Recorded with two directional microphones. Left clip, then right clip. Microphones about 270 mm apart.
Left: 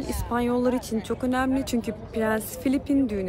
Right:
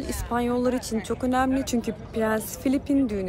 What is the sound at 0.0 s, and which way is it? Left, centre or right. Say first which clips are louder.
A woman's voice: even; centre.